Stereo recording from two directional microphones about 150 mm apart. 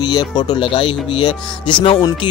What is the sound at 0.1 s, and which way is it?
Speech, 25° left (ahead or behind).